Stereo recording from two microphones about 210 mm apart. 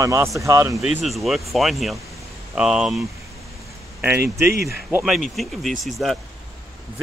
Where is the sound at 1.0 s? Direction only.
Centre (ahead or behind).